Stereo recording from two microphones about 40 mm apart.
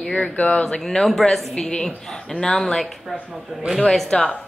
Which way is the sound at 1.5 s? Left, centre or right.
Centre.